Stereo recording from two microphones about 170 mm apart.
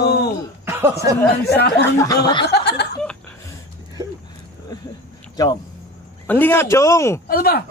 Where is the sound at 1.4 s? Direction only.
70° left (ahead or behind).